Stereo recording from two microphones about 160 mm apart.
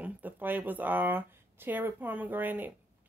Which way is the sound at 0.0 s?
10° right (ahead or behind).